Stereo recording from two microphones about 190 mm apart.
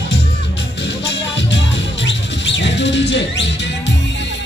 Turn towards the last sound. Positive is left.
turn(degrees=70)  # may be behind; listen again after turning